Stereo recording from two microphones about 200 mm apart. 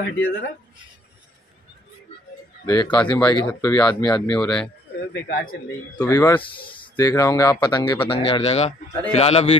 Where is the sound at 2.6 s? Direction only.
20° left (ahead or behind).